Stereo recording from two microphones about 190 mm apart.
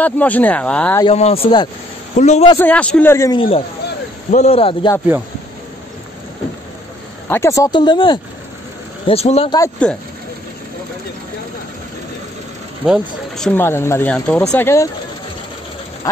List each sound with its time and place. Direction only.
0.0 s speech: 10° left (ahead or behind)
1.1 s speech: 30° left (ahead or behind)
2.1 s a man's voice: 35° left (ahead or behind)
2.6 s speech: 5° left (ahead or behind)
3.3 s a man's voice: 30° left (ahead or behind)
7.2 s a man's voice: 15° left (ahead or behind); by 9.5 s 35° left (ahead or behind)
9.8 s speech: 5° left (ahead or behind)
12.8 s speech: centre (ahead or behind)